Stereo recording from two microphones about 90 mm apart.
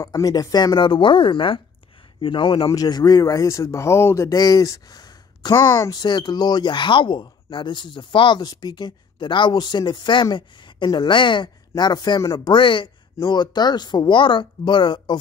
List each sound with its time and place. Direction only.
0.0 s speech: 40° left (ahead or behind); by 2.7 s 70° left (ahead or behind)
2.7 s speech: 45° left (ahead or behind)
5.6 s speech: 25° left (ahead or behind)
5.9 s speech: 55° left (ahead or behind)
8.4 s speech: 45° left (ahead or behind)
12.4 s speech: 65° left (ahead or behind)